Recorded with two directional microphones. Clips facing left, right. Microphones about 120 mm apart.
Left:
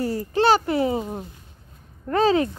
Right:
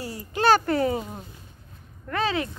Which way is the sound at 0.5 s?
20° left (ahead or behind).